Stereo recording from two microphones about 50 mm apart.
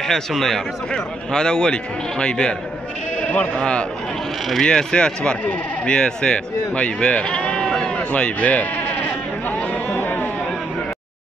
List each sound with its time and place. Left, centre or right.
0.0 s a man's voice: centre
3.2 s sheep: left
3.5 s a man's voice: left
7.6 s bleat: centre
7.9 s bleat: left
9.8 s a sound: left